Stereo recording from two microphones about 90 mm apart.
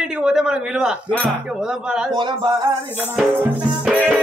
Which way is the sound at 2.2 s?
60° right (ahead or behind).